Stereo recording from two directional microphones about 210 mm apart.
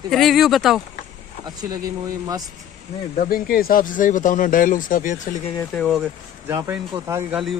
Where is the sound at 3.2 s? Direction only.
45° left (ahead or behind).